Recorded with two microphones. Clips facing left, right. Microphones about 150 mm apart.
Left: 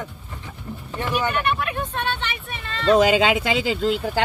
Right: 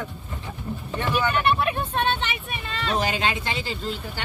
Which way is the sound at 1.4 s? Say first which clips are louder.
Right 2 dB; 25° right (ahead or behind).